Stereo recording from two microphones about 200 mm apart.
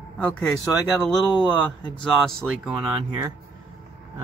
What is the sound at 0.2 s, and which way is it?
Speech, 5° left (ahead or behind).